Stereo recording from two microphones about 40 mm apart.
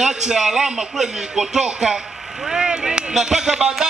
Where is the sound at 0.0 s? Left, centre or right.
Centre.